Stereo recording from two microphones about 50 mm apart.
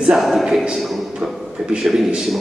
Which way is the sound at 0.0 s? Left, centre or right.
Centre.